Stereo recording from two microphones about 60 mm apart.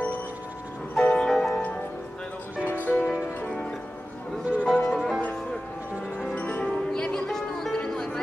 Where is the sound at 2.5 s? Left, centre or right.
Left.